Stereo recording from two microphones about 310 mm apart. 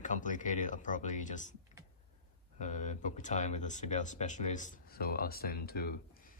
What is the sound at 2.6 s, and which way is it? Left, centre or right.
Speech, left.